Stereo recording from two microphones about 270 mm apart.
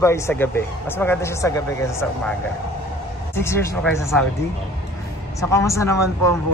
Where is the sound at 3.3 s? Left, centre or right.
Centre.